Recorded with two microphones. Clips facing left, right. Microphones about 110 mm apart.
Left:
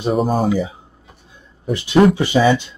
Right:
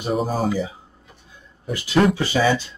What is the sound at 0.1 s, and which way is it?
Speech, centre (ahead or behind).